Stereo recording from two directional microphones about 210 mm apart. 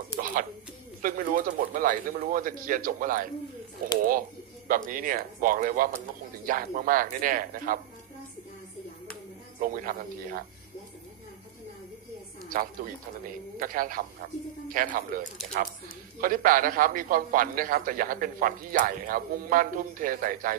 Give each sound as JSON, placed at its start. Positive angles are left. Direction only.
{"t": 0.2, "sound": "bird", "side_deg": -40}
{"t": 1.0, "sound": "a man's voice", "side_deg": -40}
{"t": 4.6, "sound": "a man's voice", "side_deg": -40}
{"t": 9.6, "sound": "a man's voice", "side_deg": -40}
{"t": 13.6, "sound": "a man's voice", "side_deg": -40}